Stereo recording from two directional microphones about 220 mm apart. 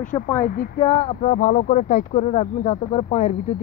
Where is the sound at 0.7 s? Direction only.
30° left (ahead or behind).